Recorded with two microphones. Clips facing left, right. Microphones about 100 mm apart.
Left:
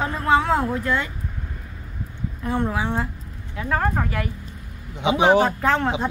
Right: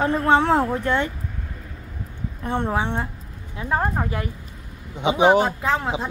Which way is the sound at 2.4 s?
25° right (ahead or behind).